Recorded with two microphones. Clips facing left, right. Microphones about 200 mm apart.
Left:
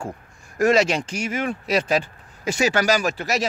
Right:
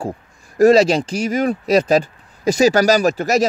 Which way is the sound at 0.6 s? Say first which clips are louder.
Right 7 dB; 35° right (ahead or behind).